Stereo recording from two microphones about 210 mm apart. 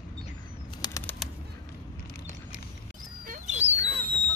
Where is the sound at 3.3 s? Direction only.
35° right (ahead or behind).